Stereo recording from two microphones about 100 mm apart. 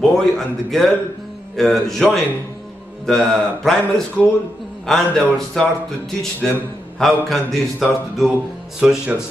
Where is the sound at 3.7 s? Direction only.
Centre (ahead or behind).